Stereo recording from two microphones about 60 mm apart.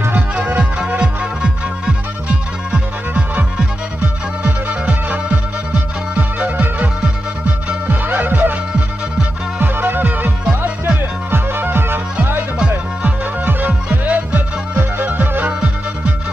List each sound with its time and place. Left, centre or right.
0.6 s music: right
7.9 s music: right
9.6 s music: right
12.5 s music: centre